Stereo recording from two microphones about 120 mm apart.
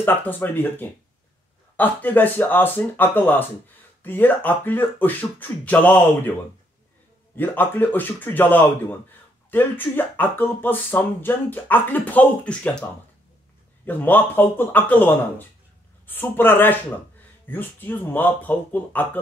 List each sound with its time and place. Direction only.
0.0 s speech: 15° left (ahead or behind)
7.3 s speech: 15° left (ahead or behind)
13.8 s speech: 15° left (ahead or behind)